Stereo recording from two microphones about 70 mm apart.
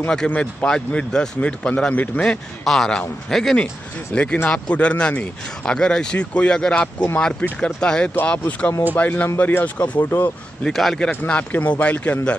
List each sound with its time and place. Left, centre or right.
0.3 s speech: left
0.7 s speech: centre
2.6 s speech: centre
4.1 s speech: centre
10.6 s speech: centre
11.1 s speech: centre